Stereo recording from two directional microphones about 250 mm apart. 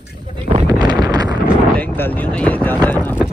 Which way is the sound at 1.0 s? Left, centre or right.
Centre.